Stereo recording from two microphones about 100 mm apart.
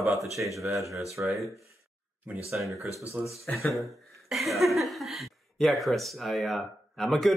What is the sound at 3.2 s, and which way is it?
Speech, 10° right (ahead or behind).